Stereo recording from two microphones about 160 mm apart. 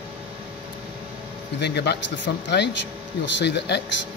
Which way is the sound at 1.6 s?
90° left.